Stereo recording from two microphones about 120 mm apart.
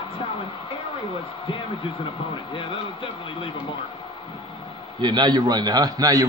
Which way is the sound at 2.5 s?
45° left (ahead or behind).